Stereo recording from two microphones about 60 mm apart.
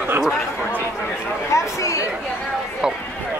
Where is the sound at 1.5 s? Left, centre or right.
Left.